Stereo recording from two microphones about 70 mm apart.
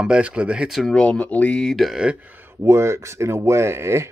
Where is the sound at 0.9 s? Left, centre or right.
Centre.